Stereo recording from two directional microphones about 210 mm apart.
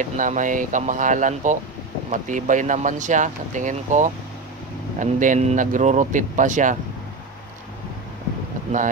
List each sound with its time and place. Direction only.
0.0 s speech: 35° right (ahead or behind)